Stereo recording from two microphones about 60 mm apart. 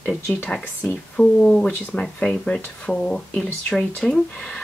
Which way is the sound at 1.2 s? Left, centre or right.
Left.